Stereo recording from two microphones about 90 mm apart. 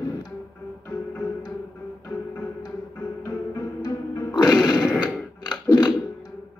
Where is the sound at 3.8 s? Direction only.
45° left (ahead or behind).